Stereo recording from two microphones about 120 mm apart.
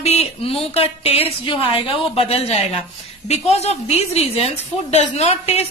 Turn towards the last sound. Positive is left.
turn(degrees=60)  # may be behind; listen again after turning